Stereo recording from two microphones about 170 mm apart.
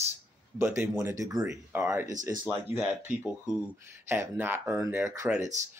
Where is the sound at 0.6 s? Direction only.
15° right (ahead or behind).